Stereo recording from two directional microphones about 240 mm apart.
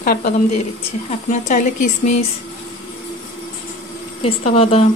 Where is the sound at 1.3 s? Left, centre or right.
Left.